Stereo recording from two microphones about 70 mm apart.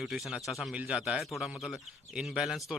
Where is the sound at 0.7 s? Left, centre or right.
Centre.